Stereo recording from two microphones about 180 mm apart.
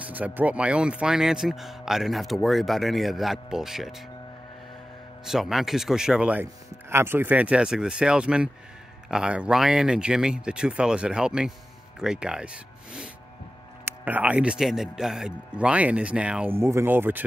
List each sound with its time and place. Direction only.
0.0 s speech: 10° right (ahead or behind)
5.2 s speech: centre (ahead or behind)